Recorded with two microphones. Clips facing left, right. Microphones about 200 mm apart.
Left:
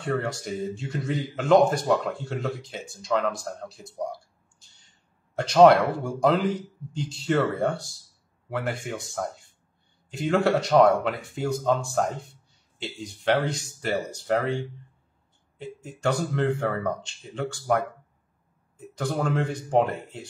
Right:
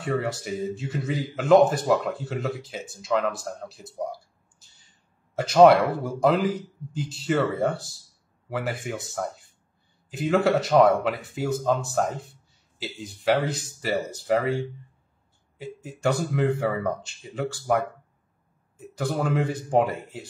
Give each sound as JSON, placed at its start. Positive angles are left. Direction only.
{"t": 0.0, "sound": "speech", "side_deg": -5}